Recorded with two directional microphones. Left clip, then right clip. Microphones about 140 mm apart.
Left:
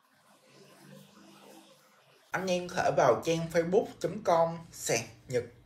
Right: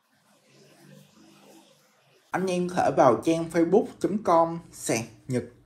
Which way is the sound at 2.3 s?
25° right (ahead or behind).